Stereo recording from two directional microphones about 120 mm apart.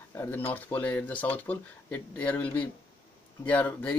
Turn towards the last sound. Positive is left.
turn(degrees=10)  # may be behind; listen again after turning